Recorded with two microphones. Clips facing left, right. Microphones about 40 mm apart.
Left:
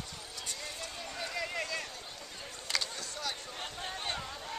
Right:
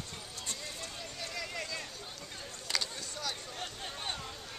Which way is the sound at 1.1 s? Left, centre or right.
Centre.